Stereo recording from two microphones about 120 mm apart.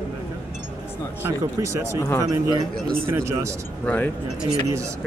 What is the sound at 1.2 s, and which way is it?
Speech, 25° right (ahead or behind).